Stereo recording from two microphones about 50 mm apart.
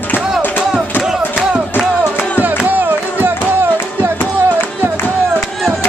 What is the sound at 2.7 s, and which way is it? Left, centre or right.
Music, right.